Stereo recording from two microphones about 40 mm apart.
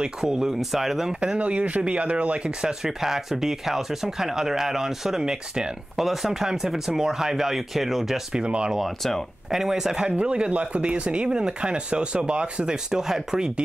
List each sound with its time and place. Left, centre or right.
0.2 s speech: centre
1.4 s speech: right
2.8 s speech: centre
8.3 s speech: right
9.5 s speech: centre
10.0 s speech: right
12.7 s speech: centre